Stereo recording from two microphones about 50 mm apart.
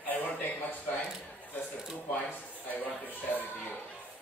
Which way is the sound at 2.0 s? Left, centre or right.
Left.